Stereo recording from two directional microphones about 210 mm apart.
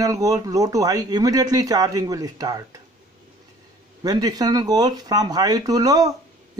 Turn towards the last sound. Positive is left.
turn(degrees=-20)  # may be behind; listen again after turning